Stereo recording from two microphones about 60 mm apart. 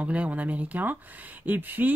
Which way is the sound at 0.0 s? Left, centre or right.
Right.